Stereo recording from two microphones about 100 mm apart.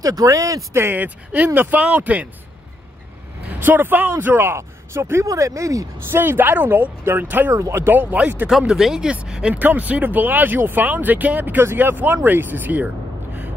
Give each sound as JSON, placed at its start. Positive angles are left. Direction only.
{"t": 0.0, "sound": "speech", "side_deg": -35}
{"t": 0.7, "sound": "speech", "side_deg": -20}
{"t": 3.4, "sound": "speech", "side_deg": -20}
{"t": 6.0, "sound": "speech", "side_deg": -20}
{"t": 7.5, "sound": "speech", "side_deg": -30}
{"t": 8.5, "sound": "speech", "side_deg": -5}